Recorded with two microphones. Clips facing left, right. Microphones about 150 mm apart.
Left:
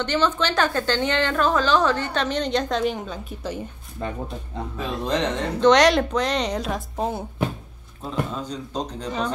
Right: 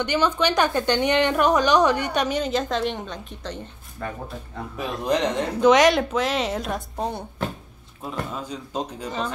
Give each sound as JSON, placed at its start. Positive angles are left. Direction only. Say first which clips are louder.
{"t": 0.0, "sound": "a woman's voice", "louder": "right 1 dB", "side_deg": -10}
{"t": 4.0, "sound": "speech", "louder": "left 2 dB", "side_deg": 20}
{"t": 4.7, "sound": "speech", "louder": "right 1 dB", "side_deg": -15}
{"t": 8.0, "sound": "a woman's voice", "louder": "left 3 dB", "side_deg": -10}